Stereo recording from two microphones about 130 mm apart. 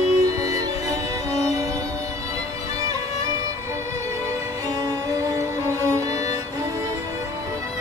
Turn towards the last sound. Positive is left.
turn(degrees=15)  # may be behind; listen again after turning